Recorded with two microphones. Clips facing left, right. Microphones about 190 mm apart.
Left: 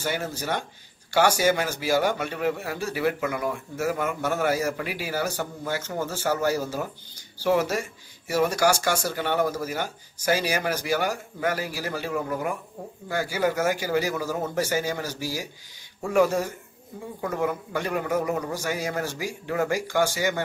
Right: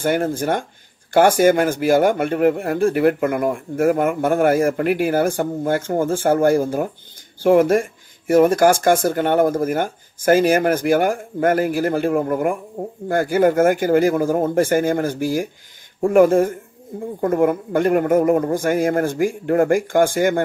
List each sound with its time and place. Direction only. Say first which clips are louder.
0.0 s speech: right 10 dB; 50° right (ahead or behind)